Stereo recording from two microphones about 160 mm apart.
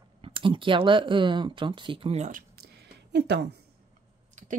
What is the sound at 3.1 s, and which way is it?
Speech, 90° right.